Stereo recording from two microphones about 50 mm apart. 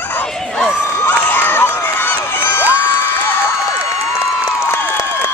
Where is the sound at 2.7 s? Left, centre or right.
Left.